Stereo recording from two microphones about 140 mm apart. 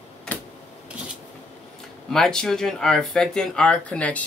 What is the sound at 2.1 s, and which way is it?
Speech, 5° left (ahead or behind).